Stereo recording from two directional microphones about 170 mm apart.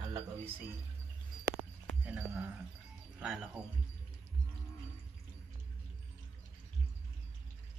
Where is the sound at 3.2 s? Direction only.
5° right (ahead or behind).